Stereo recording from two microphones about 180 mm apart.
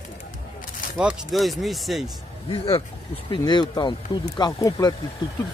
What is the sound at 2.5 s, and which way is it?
Speech, 30° left (ahead or behind).